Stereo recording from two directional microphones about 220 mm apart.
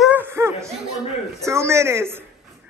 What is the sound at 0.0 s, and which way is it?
Laughter, 10° right (ahead or behind).